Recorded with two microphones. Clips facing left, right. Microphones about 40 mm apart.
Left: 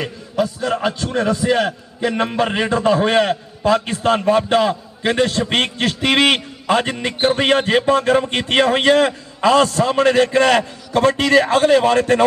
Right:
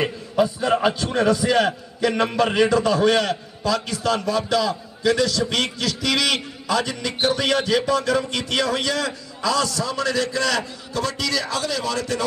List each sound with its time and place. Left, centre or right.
0.4 s a man's voice: centre
1.3 s a man's voice: left